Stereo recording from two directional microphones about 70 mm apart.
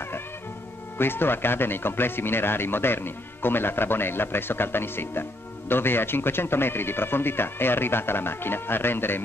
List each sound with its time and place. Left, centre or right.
0.9 s speech: left